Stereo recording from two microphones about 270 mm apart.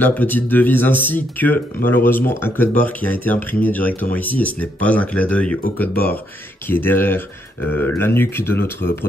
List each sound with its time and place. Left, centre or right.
0.0 s speech: centre